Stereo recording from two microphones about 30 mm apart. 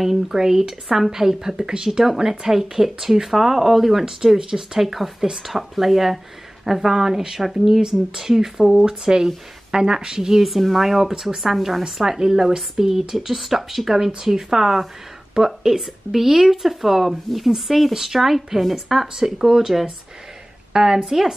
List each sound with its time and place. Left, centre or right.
0.0 s speech: centre
4.3 s a woman's voice: centre
4.7 s a woman's voice: centre; by 10.4 s right
10.4 s a woman's voice: centre
15.8 s speech: centre
20.7 s a woman's voice: right